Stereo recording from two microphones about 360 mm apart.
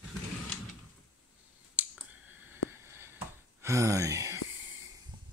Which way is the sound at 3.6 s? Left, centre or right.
Centre.